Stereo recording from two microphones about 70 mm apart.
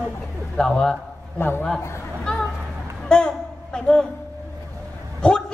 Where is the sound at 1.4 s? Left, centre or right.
Left.